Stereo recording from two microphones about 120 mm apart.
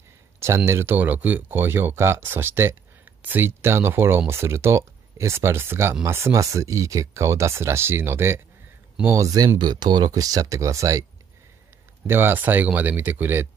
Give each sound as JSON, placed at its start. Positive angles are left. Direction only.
{"t": 0.7, "sound": "speech", "side_deg": -20}
{"t": 12.1, "sound": "speech", "side_deg": -20}